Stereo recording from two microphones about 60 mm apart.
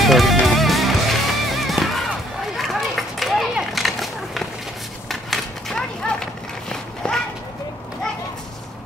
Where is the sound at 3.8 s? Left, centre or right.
Centre.